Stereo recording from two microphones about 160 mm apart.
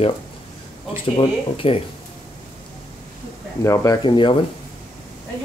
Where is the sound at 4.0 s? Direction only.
30° left (ahead or behind).